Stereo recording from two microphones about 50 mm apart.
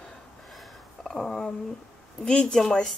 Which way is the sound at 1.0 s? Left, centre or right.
Centre.